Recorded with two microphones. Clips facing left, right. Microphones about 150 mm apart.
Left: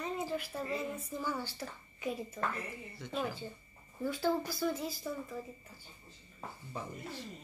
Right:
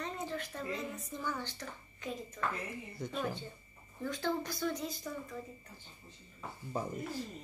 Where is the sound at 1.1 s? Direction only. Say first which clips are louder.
Even; 10° left (ahead or behind).